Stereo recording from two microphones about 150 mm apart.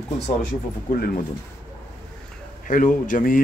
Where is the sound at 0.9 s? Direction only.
80° left.